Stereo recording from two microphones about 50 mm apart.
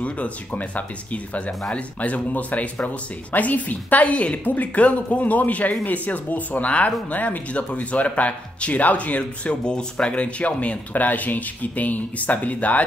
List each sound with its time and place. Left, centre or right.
0.0 s speech: left